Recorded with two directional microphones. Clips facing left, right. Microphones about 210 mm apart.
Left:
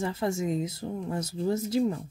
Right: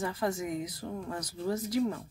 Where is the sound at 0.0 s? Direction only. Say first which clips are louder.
Left 3 dB; 25° left (ahead or behind).